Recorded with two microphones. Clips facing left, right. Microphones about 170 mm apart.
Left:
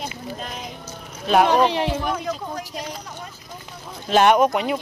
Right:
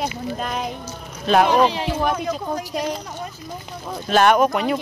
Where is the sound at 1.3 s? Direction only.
10° left (ahead or behind).